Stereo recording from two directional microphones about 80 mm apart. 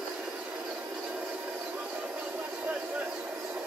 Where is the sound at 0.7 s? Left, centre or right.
Centre.